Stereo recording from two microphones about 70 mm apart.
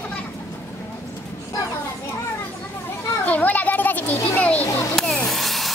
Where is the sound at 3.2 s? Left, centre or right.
Left.